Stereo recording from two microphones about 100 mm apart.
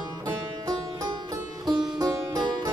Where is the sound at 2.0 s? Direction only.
45° right (ahead or behind).